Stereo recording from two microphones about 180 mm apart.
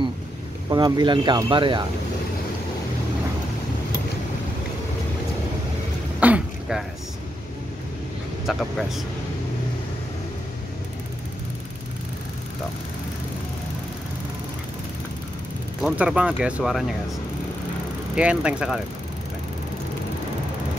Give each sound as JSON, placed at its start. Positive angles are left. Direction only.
{"t": 0.7, "sound": "speech", "side_deg": -25}
{"t": 6.1, "sound": "throat clearing", "side_deg": -5}
{"t": 8.5, "sound": "speech", "side_deg": 0}
{"t": 15.8, "sound": "speech", "side_deg": -5}
{"t": 18.1, "sound": "speech", "side_deg": -5}